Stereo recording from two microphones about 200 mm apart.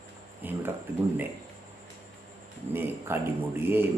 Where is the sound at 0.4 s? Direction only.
10° right (ahead or behind).